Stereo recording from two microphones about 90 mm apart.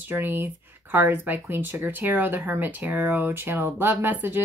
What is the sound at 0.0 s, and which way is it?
Speech, 25° right (ahead or behind).